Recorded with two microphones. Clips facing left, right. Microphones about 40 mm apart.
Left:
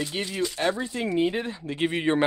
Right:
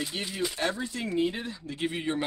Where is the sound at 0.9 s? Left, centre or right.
Left.